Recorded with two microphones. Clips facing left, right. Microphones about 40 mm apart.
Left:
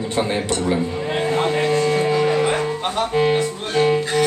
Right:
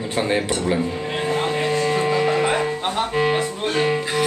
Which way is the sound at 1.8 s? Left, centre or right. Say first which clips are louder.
Left 2 dB; centre.